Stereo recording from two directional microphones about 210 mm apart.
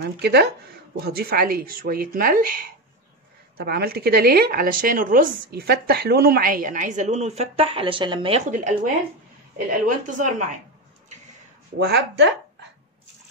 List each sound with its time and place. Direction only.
0.0 s a woman's voice: 50° right (ahead or behind)
11.8 s speech: 50° right (ahead or behind)